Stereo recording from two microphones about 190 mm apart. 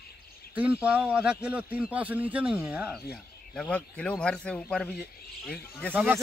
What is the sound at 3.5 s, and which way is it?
Speech, 5° left (ahead or behind).